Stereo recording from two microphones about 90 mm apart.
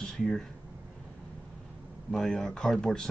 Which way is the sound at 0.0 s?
5° left (ahead or behind).